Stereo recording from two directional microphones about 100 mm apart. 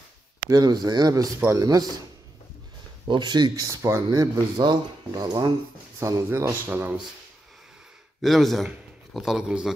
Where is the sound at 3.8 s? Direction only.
30° right (ahead or behind).